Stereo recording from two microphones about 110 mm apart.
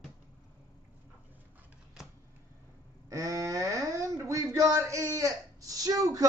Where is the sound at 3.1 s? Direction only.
30° right (ahead or behind).